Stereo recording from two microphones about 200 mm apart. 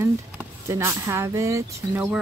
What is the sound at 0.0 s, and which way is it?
Speech, 15° right (ahead or behind).